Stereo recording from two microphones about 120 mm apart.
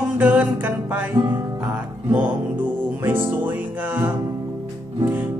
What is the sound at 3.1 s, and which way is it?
Music, 15° right (ahead or behind).